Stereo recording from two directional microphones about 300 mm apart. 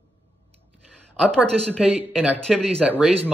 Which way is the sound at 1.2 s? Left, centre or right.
Centre.